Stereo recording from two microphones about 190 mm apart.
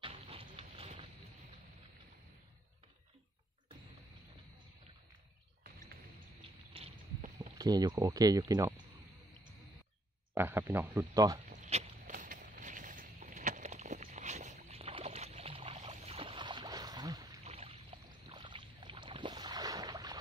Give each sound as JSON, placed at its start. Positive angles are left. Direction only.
{"t": 0.0, "sound": "a sound", "side_deg": -30}
{"t": 0.6, "sound": "vehicle", "side_deg": -30}
{"t": 6.7, "sound": "boat", "side_deg": -30}
{"t": 7.5, "sound": "speech", "side_deg": -20}
{"t": 10.3, "sound": "speech", "side_deg": -10}
{"t": 11.4, "sound": "a sound", "side_deg": -40}
{"t": 17.5, "sound": "boat", "side_deg": -30}